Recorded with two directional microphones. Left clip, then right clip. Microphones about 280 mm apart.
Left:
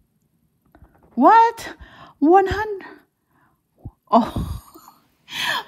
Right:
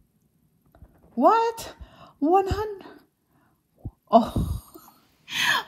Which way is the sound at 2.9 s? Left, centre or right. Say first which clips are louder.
Left 5 dB; right.